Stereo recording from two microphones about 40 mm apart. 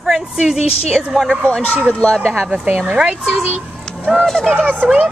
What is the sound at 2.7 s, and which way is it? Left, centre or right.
Speech, right.